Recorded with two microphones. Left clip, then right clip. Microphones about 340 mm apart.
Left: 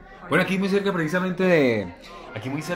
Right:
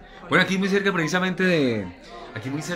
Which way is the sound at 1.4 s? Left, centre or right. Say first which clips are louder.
Left 5 dB; centre.